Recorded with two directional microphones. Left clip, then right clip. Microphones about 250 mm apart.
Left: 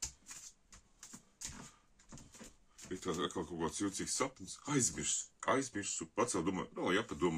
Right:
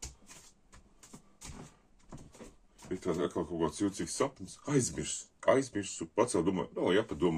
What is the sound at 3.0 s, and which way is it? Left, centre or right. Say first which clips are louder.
Speech: right 5 dB; left.